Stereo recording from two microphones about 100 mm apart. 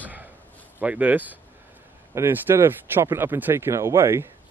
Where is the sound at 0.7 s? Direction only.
15° right (ahead or behind).